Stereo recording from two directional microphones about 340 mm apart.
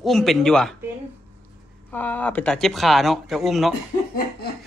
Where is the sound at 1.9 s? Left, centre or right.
Centre.